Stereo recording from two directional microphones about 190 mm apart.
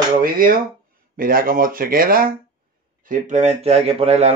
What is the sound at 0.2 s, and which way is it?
Speech, 45° right (ahead or behind).